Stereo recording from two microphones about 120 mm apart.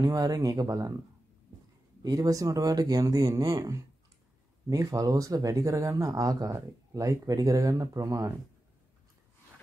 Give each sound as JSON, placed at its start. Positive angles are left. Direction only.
{"t": 0.0, "sound": "speech", "side_deg": -30}
{"t": 2.0, "sound": "speech", "side_deg": -30}